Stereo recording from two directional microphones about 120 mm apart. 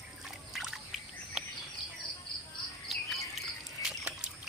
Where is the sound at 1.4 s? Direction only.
Centre (ahead or behind).